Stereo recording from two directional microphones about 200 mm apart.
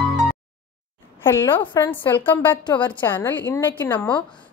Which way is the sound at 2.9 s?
10° left (ahead or behind).